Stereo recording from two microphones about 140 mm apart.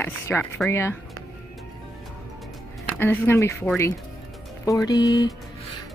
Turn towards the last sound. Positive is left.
turn(degrees=25)  # may be behind; listen again after turning